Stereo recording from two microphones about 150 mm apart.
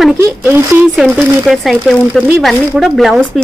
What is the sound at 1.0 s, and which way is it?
Speech, centre (ahead or behind).